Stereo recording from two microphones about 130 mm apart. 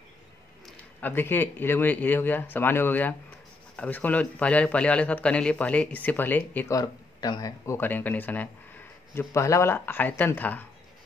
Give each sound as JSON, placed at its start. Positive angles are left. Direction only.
{"t": 1.0, "sound": "a man's voice", "side_deg": 15}
{"t": 6.7, "sound": "speech", "side_deg": 30}
{"t": 7.7, "sound": "a man's voice", "side_deg": 15}